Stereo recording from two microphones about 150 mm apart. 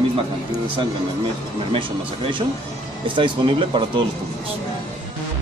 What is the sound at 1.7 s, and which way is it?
Speech, 35° right (ahead or behind).